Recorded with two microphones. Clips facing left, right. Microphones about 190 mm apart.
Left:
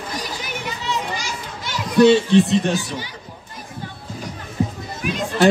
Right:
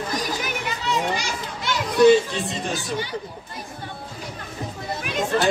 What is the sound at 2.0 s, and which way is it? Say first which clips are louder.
Speech: left 1 dB; 70° left (ahead or behind).